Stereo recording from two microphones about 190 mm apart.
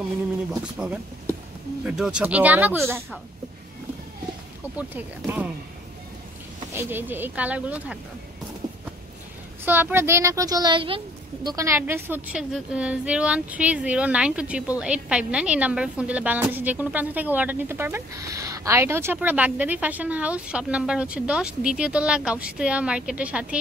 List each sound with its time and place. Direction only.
0.5 s a woman's voice: 5° right (ahead or behind)
4.7 s a woman's voice: 10° right (ahead or behind)
6.7 s a woman's voice: 10° right (ahead or behind)
9.7 s a woman's voice: 10° right (ahead or behind); by 11.0 s 25° right (ahead or behind)
11.4 s a woman's voice: 15° right (ahead or behind)